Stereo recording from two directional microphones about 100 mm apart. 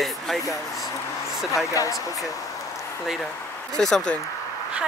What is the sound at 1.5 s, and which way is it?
Speech, 35° left (ahead or behind).